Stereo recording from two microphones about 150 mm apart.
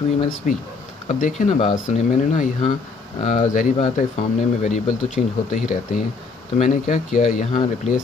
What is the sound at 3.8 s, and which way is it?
Speech, 55° left (ahead or behind).